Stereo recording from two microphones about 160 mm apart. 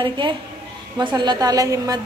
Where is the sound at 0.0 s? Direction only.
30° right (ahead or behind).